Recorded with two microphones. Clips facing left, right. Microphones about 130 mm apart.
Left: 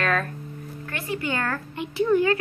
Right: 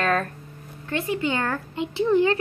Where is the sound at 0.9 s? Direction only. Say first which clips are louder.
Right 4 dB; 20° right (ahead or behind).